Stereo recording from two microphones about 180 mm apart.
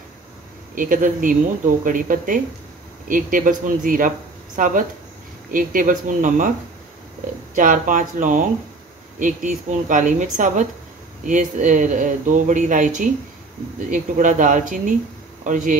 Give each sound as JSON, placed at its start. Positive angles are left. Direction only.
{"t": 0.7, "sound": "speech", "side_deg": -50}
{"t": 7.5, "sound": "speech", "side_deg": -45}